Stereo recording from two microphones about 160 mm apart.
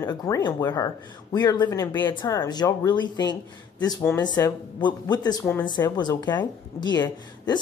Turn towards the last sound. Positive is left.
turn(degrees=25)  # may be behind; listen again after turning